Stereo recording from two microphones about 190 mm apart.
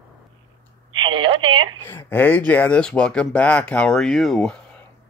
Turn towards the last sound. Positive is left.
turn(degrees=0)  # may be behind; listen again after turning